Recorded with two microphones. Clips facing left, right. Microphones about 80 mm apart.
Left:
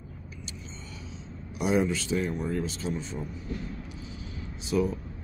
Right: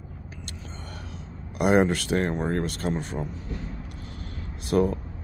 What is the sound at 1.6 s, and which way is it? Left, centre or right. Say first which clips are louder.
Speech: right 5 dB; right.